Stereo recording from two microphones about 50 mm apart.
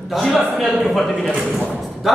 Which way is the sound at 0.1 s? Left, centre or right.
Centre.